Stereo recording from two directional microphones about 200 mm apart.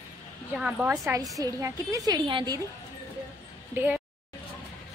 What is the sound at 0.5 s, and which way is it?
A woman's voice, 5° right (ahead or behind).